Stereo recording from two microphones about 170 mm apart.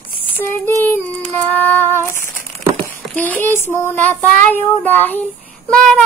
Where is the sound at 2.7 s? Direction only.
10° left (ahead or behind).